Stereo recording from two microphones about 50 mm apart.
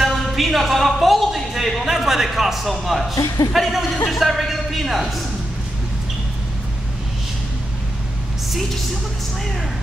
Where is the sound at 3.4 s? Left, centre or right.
Left.